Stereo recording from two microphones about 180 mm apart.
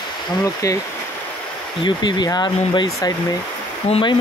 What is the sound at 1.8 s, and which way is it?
Speech, 25° left (ahead or behind).